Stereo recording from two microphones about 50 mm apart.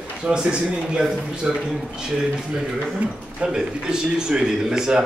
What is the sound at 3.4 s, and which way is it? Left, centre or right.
Speech, centre.